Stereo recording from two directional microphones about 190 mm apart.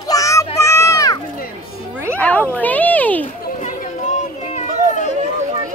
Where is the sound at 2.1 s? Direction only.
10° left (ahead or behind).